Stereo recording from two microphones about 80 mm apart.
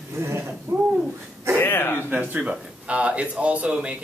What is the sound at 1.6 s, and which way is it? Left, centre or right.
Speech, left.